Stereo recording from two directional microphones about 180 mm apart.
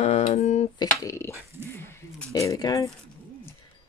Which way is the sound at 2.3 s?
20° left (ahead or behind).